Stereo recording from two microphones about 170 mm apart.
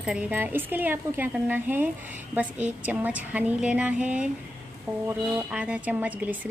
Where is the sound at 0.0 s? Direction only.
5° right (ahead or behind).